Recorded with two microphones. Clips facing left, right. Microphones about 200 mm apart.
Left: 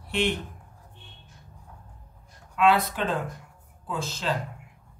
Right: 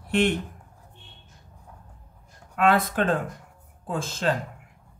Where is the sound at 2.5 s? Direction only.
55° right (ahead or behind).